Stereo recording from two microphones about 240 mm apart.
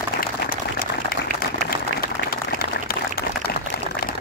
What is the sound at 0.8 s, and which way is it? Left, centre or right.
Applause, left.